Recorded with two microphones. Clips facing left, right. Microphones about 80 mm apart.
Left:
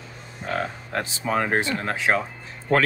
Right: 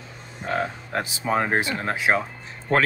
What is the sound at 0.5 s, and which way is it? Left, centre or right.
Speech, centre.